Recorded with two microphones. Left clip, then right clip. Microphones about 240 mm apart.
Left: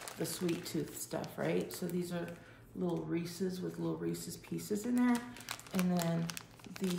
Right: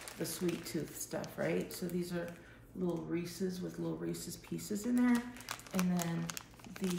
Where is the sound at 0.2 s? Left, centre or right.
Centre.